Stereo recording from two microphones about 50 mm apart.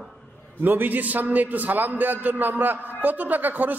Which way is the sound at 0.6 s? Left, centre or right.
Right.